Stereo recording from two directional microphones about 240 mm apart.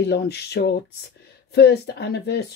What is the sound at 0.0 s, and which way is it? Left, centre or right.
Speech, left.